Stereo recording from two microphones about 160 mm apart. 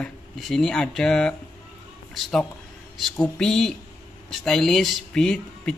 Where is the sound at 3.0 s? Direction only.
5° left (ahead or behind).